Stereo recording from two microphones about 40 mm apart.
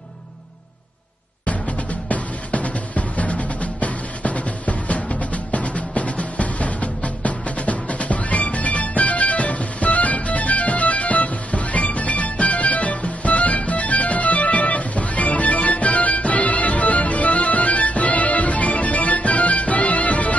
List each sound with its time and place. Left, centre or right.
1.4 s music: left